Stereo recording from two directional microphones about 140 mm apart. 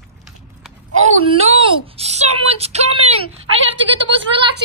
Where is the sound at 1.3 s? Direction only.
40° right (ahead or behind).